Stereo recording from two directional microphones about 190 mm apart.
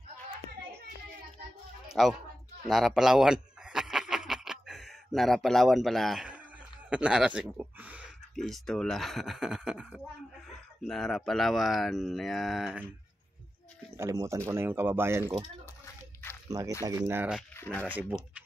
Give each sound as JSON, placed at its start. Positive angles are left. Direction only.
{"t": 1.9, "sound": "speech", "side_deg": 0}
{"t": 2.7, "sound": "a sound", "side_deg": 0}
{"t": 6.9, "sound": "speech", "side_deg": -5}
{"t": 13.9, "sound": "speech", "side_deg": -15}
{"t": 16.4, "sound": "speech", "side_deg": -20}
{"t": 17.6, "sound": "speech", "side_deg": 10}